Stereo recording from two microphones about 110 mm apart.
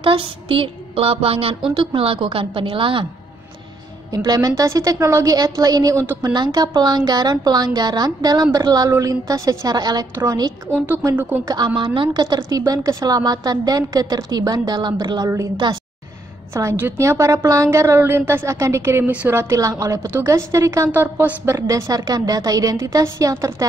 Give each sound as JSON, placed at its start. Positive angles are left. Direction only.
{"t": 0.0, "sound": "a sound", "side_deg": -55}
{"t": 4.1, "sound": "a woman's voice", "side_deg": -35}
{"t": 11.4, "sound": "a woman's voice", "side_deg": -40}
{"t": 16.5, "sound": "a woman's voice", "side_deg": -25}
{"t": 19.5, "sound": "a woman's voice", "side_deg": -30}